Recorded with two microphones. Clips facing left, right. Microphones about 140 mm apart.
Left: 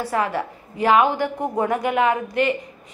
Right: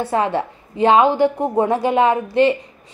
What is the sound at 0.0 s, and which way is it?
Speech, 25° right (ahead or behind).